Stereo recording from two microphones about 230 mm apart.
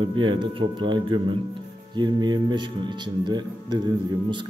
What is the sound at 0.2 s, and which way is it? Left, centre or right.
Speech, right.